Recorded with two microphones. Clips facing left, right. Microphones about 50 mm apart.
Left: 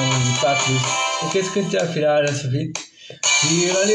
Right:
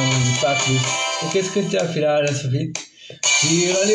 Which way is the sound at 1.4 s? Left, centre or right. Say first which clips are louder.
Right 1 dB; centre.